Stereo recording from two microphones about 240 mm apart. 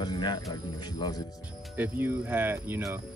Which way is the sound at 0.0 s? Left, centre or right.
Centre.